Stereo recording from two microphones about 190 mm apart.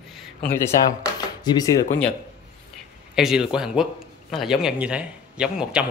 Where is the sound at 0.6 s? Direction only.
20° left (ahead or behind).